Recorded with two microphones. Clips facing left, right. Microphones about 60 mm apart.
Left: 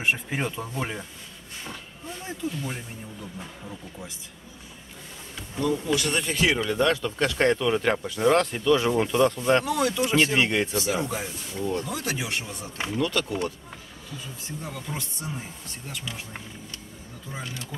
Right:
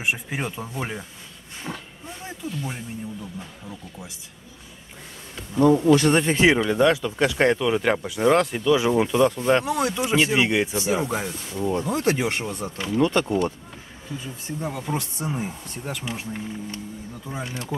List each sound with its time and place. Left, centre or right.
0.0 s speech: centre
1.6 s roaring cats: centre
5.6 s speech: right; by 7.5 s centre
7.5 s speech: centre
9.7 s speech: right
9.9 s speech: centre
11.9 s speech: right
12.9 s speech: right
14.8 s speech: right
17.4 s speech: right